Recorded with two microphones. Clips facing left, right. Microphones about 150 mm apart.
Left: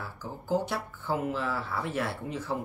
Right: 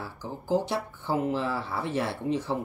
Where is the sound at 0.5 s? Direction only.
25° right (ahead or behind).